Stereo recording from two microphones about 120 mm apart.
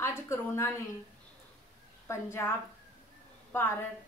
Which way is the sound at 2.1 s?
20° left (ahead or behind).